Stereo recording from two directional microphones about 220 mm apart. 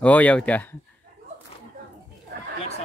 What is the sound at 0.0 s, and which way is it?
Speech, 5° left (ahead or behind).